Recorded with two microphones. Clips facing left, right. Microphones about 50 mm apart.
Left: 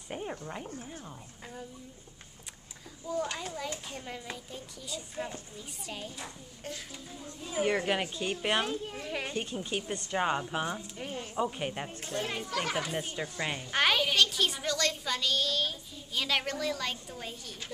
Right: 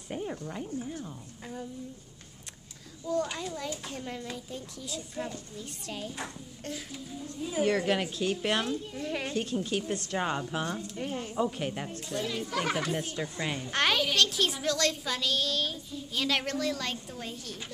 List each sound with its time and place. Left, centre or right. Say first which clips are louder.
0.1 s speech: right 2 dB; centre
3.1 s a child's voice: right 3 dB; centre
7.6 s speech: right 2 dB; centre
11.0 s a child's voice: right 4 dB; centre
11.3 s speech: right 1 dB; centre
12.0 s speech: right 1 dB; left
12.4 s a child's voice: right 2 dB; centre
12.7 s a child's voice: right 2 dB; centre